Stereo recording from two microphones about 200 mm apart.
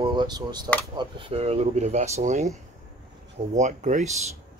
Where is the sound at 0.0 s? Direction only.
20° right (ahead or behind).